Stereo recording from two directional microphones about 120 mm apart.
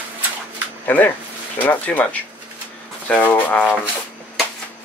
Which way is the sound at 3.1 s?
15° left (ahead or behind).